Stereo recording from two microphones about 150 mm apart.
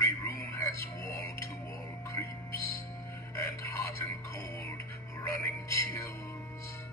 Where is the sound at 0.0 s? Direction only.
20° left (ahead or behind).